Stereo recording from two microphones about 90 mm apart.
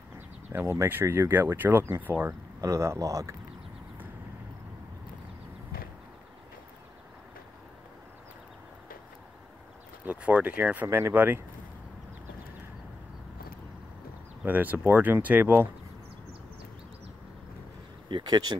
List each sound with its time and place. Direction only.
0.5 s speech: 30° right (ahead or behind)
2.6 s speech: 35° right (ahead or behind)
10.0 s speech: 15° right (ahead or behind)
14.4 s speech: 20° right (ahead or behind)
18.0 s speech: 55° right (ahead or behind)